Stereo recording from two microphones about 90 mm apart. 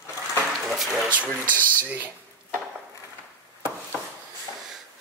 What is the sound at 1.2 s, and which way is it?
Speech, 20° left (ahead or behind).